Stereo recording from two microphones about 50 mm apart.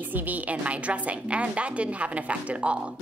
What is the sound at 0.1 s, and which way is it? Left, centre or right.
A woman's voice, right.